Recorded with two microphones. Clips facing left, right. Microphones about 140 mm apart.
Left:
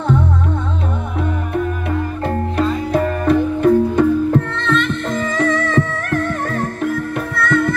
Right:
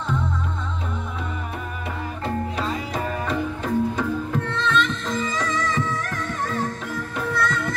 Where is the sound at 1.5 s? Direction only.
60° left (ahead or behind).